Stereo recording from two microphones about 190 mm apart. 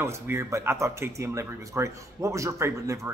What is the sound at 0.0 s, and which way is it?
Speech, 15° right (ahead or behind).